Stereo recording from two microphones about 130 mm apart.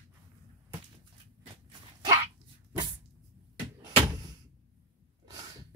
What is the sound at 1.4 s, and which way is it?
Dog, 40° right (ahead or behind).